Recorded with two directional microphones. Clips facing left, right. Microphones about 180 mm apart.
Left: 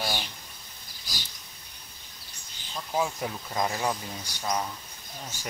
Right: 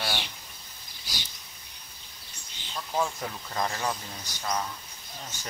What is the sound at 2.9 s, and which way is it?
Speech, 15° left (ahead or behind).